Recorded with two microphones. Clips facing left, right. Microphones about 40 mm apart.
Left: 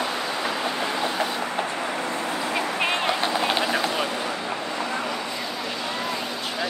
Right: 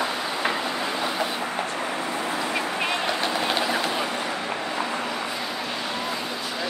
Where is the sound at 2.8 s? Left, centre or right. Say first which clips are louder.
Left 2 dB; centre.